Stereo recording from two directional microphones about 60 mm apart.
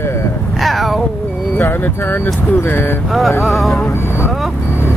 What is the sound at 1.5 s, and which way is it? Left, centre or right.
Speech, left.